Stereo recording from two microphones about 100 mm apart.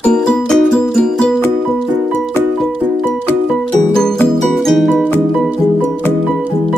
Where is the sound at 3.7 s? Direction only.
5° left (ahead or behind).